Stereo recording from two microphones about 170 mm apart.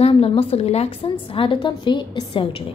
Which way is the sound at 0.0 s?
35° left (ahead or behind).